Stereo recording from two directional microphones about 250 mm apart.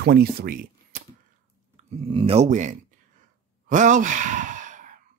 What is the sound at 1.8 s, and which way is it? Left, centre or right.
Speech, right.